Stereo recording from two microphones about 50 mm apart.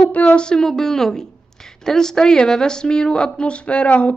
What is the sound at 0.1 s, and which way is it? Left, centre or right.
Speech, left.